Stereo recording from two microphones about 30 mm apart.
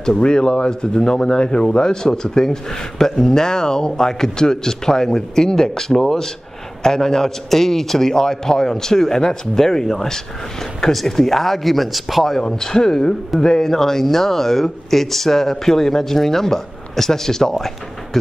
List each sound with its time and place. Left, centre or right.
0.2 s speech: left; by 12.4 s centre
12.4 s speech: left